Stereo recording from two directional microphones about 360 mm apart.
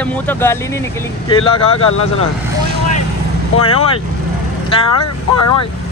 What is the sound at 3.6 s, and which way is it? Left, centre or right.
Speech, centre.